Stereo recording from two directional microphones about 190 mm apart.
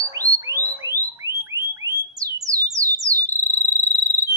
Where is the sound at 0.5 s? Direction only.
10° left (ahead or behind).